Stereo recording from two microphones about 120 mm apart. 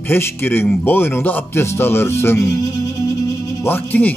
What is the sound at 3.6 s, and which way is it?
Speech, 15° left (ahead or behind).